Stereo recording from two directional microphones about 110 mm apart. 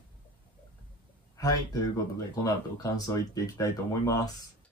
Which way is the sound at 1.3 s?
30° left (ahead or behind).